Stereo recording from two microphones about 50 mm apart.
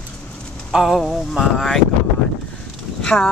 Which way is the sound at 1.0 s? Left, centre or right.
Centre.